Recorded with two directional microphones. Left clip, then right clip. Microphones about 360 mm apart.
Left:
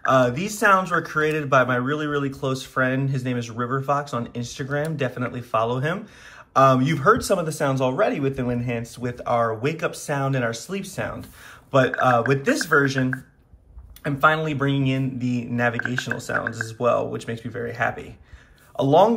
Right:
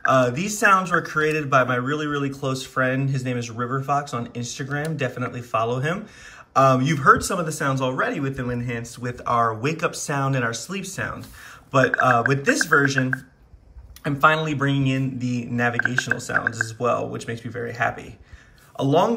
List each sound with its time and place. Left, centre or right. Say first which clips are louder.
0.0 s speech: even; centre